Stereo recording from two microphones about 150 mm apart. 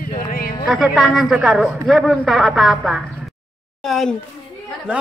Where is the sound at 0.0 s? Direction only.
70° left (ahead or behind).